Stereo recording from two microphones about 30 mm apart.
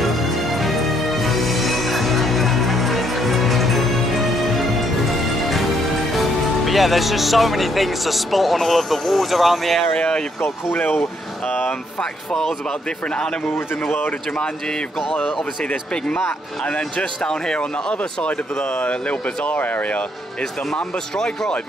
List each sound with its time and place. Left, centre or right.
0.6 s music: centre
6.1 s speech: centre
17.2 s speech: left
18.8 s speech: left
19.5 s speech: left